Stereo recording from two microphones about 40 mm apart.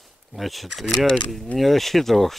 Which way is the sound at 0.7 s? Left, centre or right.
Centre.